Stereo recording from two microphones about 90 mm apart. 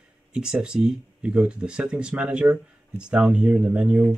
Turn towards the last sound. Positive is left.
turn(degrees=-15)  # may be behind; listen again after turning